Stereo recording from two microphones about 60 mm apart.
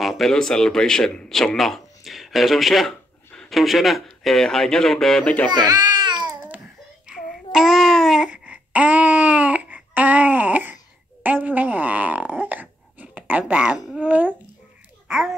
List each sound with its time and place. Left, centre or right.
0.0 s speech: centre
5.2 s speech: left
7.1 s babbling: centre
8.3 s a sound: right
11.2 s wail: right
13.9 s a sound: right
15.0 s babbling: centre